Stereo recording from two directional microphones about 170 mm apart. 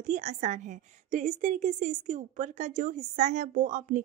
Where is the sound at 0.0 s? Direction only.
45° right (ahead or behind).